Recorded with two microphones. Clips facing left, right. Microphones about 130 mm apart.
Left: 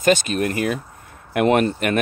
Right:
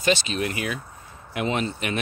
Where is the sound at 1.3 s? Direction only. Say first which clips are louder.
Left 9 dB; 60° left (ahead or behind).